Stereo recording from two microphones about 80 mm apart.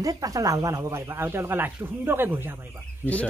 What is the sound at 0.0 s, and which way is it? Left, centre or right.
Speech, right.